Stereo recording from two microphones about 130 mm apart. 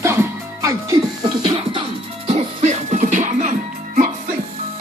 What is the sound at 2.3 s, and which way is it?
Music, 65° right (ahead or behind).